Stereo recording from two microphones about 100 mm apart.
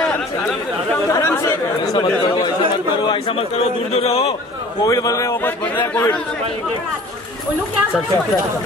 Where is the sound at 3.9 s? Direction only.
90° left.